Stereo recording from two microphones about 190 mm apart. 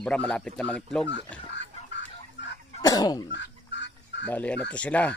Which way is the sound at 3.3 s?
70° left (ahead or behind).